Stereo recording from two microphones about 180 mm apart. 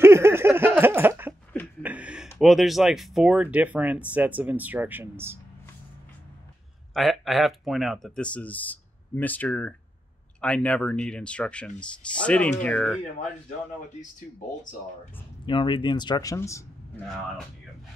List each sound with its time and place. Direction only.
0.0 s a sound: 15° right (ahead or behind)
2.3 s speech: centre (ahead or behind)
6.9 s speech: centre (ahead or behind)
15.4 s speech: 25° left (ahead or behind)